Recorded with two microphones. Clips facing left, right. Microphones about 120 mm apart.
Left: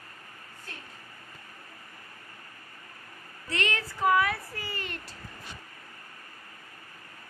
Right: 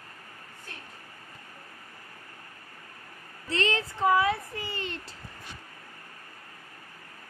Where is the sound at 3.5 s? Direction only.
30° right (ahead or behind).